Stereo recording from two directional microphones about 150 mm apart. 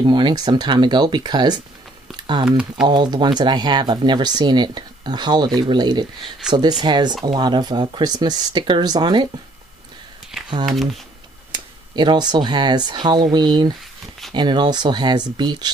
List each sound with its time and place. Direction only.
0.0 s speech: 30° right (ahead or behind)
6.4 s speech: 5° right (ahead or behind)
6.8 s speech: 30° right (ahead or behind)
10.3 s a sound: 5° right (ahead or behind)
10.7 s speech: centre (ahead or behind)
11.5 s speech: 30° right (ahead or behind)